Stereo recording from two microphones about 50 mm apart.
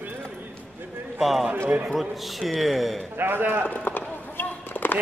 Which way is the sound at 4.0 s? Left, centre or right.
Left.